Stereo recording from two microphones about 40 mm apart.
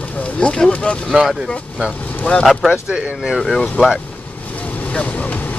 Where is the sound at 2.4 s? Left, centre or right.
Centre.